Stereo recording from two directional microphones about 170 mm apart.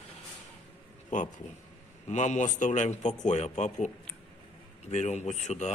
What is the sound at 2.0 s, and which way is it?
Speech, 45° left (ahead or behind).